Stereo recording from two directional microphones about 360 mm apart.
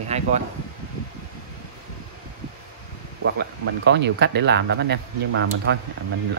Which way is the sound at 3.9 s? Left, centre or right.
Right.